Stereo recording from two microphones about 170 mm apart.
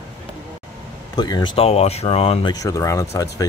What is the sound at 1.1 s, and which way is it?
Speech, 25° left (ahead or behind).